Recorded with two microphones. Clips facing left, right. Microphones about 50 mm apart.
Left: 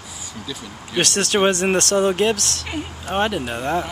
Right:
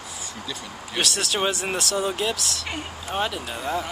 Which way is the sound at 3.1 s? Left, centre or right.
Left.